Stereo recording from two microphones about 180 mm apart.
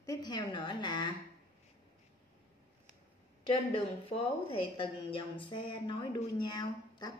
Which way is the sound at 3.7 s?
30° left (ahead or behind).